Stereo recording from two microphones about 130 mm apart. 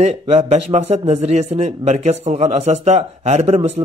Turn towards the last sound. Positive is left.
turn(degrees=-55)  # may be behind; listen again after turning